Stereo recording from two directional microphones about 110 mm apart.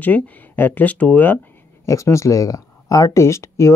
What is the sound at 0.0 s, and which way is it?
Speech, 15° left (ahead or behind).